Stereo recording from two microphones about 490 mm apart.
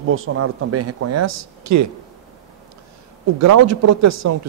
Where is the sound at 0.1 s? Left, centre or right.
Right.